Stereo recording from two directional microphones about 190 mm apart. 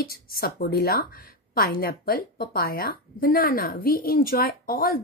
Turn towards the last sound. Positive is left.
turn(degrees=50)  # may be behind; listen again after turning